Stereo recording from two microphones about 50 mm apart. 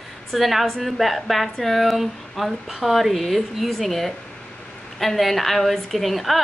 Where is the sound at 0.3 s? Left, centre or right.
Centre.